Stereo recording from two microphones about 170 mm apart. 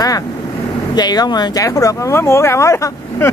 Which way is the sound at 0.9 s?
25° left (ahead or behind).